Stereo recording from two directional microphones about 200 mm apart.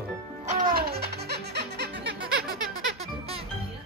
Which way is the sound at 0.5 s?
45° right (ahead or behind).